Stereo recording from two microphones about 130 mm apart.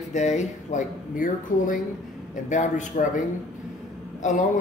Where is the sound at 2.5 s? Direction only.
70° left (ahead or behind).